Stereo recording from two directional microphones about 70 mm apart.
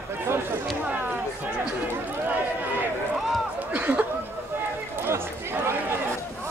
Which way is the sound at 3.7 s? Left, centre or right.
Centre.